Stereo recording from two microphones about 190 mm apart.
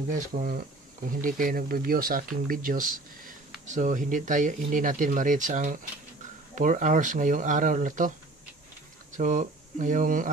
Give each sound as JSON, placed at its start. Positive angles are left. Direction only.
{"t": 0.1, "sound": "speech", "side_deg": -45}
{"t": 9.1, "sound": "speech", "side_deg": -40}